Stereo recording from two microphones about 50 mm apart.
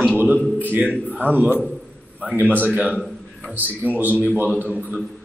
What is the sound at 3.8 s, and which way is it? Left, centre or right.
Speech, right.